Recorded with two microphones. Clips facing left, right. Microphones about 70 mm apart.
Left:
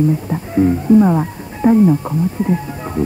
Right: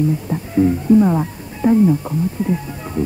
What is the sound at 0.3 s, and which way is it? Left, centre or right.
Speech, left.